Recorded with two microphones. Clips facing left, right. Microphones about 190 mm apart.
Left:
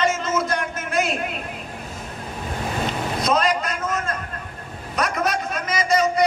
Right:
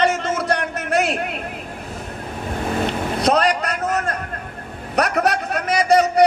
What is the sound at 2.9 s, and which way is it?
Vehicle, 65° right (ahead or behind).